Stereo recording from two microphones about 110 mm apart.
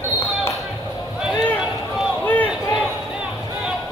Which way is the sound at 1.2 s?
5° right (ahead or behind).